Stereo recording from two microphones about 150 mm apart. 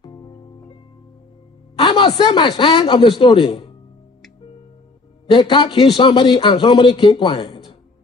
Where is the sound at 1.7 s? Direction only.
35° left (ahead or behind).